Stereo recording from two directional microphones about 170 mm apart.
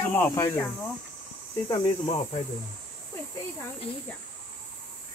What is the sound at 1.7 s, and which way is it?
Speech, 25° left (ahead or behind).